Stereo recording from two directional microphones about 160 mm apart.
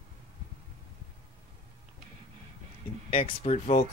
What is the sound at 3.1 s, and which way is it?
Speech, 35° left (ahead or behind).